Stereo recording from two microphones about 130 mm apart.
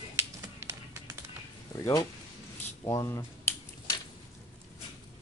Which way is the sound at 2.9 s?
25° left (ahead or behind).